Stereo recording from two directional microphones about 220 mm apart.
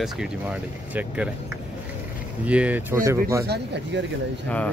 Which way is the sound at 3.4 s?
50° right (ahead or behind).